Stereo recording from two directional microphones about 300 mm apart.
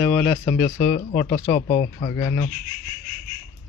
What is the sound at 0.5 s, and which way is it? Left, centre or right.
Speech, left.